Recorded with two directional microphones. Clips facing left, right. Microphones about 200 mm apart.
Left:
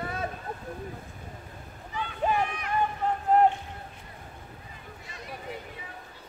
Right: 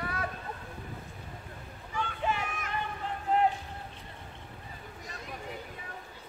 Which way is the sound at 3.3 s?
45° left (ahead or behind).